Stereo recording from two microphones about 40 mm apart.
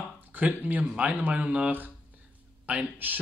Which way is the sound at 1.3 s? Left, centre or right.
Right.